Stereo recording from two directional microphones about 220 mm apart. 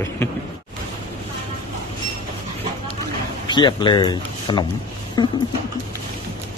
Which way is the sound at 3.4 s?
20° left (ahead or behind).